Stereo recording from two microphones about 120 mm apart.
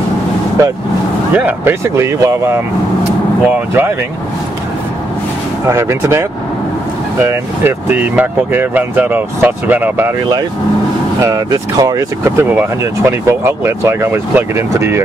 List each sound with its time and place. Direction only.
1.3 s speech: 15° right (ahead or behind)
5.7 s speech: 25° right (ahead or behind)
11.1 s speech: 30° right (ahead or behind)